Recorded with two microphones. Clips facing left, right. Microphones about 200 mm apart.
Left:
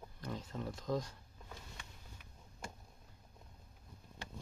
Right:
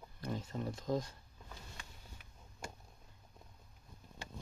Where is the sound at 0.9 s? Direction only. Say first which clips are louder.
Right 1 dB; 20° right (ahead or behind).